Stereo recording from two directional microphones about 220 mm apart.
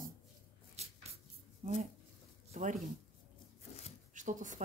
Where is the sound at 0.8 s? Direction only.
30° right (ahead or behind).